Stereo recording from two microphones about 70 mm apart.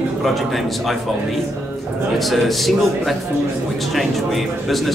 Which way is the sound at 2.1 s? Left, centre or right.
Centre.